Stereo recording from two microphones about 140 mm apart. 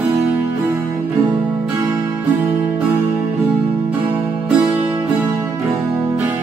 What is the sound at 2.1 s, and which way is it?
Music, 10° right (ahead or behind).